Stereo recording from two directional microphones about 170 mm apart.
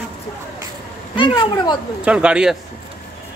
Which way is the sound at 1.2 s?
30° left (ahead or behind).